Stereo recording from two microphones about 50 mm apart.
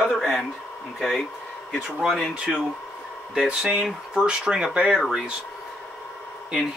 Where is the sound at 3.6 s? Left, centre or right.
Centre.